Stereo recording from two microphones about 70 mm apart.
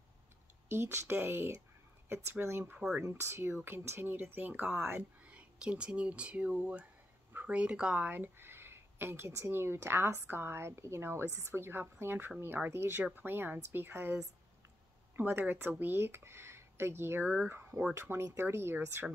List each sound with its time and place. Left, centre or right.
0.7 s speech: right
5.2 s speech: centre
8.0 s speech: right